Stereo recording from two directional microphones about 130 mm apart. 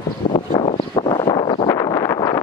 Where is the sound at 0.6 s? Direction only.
40° left (ahead or behind).